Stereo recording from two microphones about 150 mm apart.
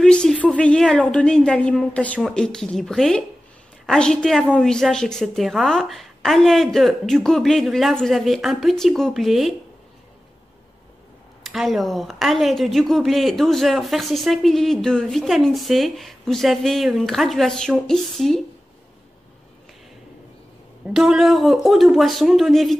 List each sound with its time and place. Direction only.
0.0 s speech: 5° left (ahead or behind)
11.4 s speech: centre (ahead or behind)
20.8 s speech: 5° right (ahead or behind)